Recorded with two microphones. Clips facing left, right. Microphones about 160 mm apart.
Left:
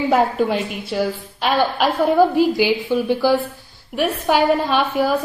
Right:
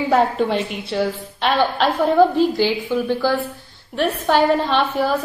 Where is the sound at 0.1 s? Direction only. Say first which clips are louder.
Right 1 dB; 5° left (ahead or behind).